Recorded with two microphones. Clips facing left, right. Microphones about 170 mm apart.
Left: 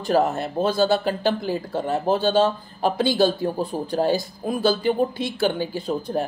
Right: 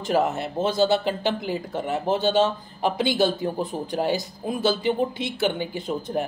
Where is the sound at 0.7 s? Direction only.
20° right (ahead or behind).